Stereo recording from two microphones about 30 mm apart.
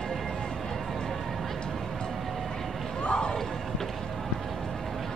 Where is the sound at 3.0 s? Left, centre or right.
Left.